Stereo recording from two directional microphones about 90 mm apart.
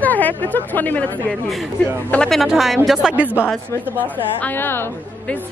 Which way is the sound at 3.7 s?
35° left (ahead or behind).